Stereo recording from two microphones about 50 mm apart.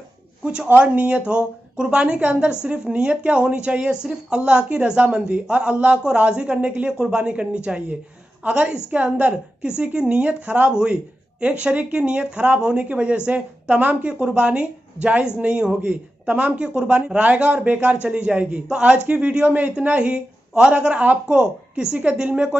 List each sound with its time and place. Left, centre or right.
0.4 s speech: centre
0.7 s speech: right
1.2 s speech: centre
19.4 s speech: right